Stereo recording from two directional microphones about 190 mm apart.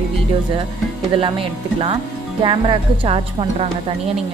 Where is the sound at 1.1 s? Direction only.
30° right (ahead or behind).